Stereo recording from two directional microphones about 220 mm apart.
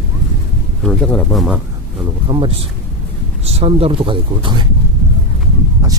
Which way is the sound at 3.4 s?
25° right (ahead or behind).